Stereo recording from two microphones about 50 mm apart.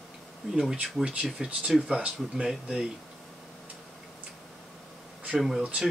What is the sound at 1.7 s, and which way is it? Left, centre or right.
Speech, centre.